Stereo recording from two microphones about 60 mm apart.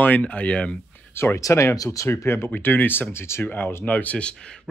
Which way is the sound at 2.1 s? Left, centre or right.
Left.